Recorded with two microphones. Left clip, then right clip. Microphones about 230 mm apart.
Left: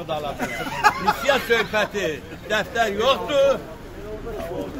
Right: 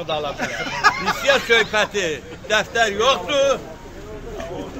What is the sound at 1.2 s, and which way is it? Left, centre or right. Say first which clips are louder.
A man's voice: right 6 dB; centre.